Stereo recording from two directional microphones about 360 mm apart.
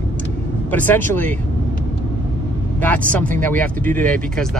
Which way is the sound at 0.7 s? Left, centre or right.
Centre.